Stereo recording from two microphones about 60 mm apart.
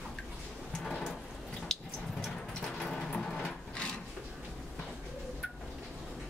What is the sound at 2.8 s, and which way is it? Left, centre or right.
Vehicle, centre.